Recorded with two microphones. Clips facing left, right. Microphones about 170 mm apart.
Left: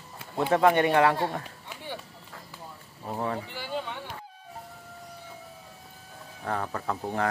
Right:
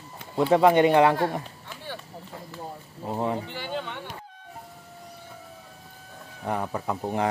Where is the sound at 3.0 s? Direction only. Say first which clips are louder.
Right 3 dB; 20° right (ahead or behind).